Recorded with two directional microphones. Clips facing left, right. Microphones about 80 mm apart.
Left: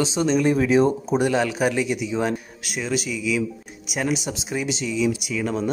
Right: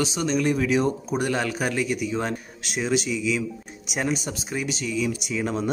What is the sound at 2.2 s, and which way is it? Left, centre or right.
A man's voice, centre.